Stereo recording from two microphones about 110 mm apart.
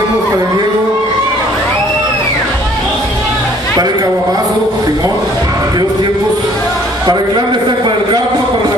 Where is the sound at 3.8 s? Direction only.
35° right (ahead or behind).